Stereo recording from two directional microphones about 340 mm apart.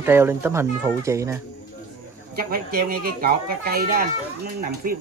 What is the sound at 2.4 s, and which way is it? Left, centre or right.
A child's voice, right.